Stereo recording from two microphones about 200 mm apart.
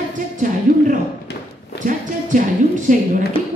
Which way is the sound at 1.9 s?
40° right (ahead or behind).